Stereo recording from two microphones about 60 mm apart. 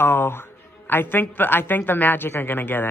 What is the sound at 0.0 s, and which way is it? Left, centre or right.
A woman's voice, left.